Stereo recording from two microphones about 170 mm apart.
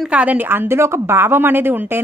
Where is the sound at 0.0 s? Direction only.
10° right (ahead or behind).